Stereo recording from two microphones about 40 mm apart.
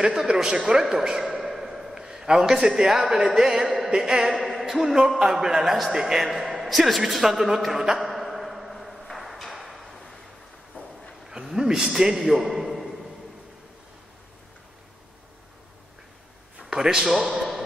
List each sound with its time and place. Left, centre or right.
0.0 s a man's voice: centre
1.2 s a sound: centre
2.0 s a man's voice: centre
7.2 s a sound: centre
11.2 s a man's voice: centre
16.6 s a man's voice: centre